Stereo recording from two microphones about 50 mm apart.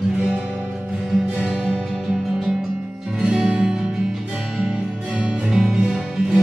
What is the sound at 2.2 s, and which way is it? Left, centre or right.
Music, centre.